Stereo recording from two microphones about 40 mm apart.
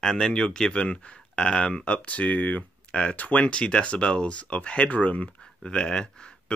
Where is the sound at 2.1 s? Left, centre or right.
Left.